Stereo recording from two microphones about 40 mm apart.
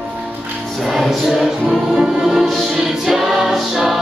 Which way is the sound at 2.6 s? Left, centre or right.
Centre.